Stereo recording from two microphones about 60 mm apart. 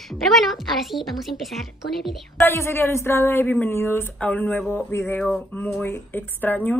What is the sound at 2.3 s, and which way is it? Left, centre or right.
Speech, left.